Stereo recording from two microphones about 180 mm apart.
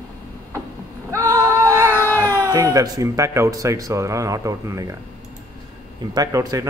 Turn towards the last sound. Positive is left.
turn(degrees=-20)  # may be behind; listen again after turning